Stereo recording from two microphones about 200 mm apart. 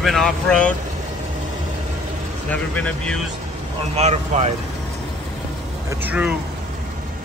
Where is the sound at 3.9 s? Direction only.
35° right (ahead or behind).